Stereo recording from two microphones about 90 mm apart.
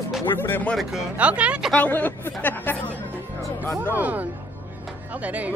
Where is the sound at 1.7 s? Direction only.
20° left (ahead or behind).